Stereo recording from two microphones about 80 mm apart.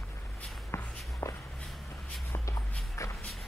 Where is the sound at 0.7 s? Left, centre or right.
Left.